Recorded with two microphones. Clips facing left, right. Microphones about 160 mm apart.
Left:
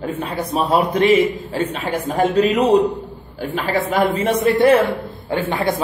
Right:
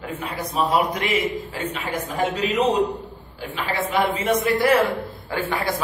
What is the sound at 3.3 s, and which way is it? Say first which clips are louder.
Speech: left 6 dB; 40° left (ahead or behind).